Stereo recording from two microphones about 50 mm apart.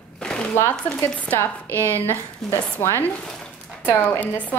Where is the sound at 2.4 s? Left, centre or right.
Centre.